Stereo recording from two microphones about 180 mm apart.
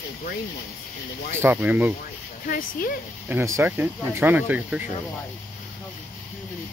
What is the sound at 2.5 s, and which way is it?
Speech, 55° left (ahead or behind).